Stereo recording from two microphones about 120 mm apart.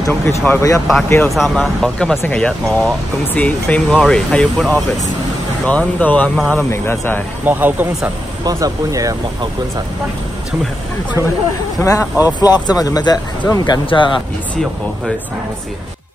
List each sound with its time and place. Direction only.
0.0 s speech: 25° left (ahead or behind)
1.3 s speech: centre (ahead or behind); by 7.2 s 20° left (ahead or behind)
7.4 s speech: 15° right (ahead or behind)
8.5 s speech: 30° right (ahead or behind)
11.8 s speech: 25° left (ahead or behind)
13.8 s speech: 45° left (ahead or behind)